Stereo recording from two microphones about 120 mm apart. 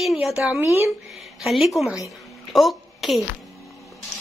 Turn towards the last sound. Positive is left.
turn(degrees=0)  # may be behind; listen again after turning